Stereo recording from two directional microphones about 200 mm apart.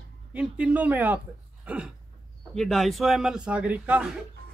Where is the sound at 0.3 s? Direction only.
5° right (ahead or behind).